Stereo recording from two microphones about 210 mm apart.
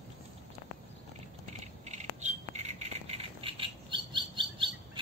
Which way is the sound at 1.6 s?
30° right (ahead or behind).